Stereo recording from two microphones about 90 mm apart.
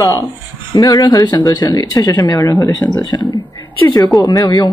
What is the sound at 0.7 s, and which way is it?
Speech, 40° left (ahead or behind).